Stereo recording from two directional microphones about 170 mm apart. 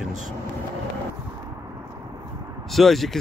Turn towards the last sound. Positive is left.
turn(degrees=0)  # may be behind; listen again after turning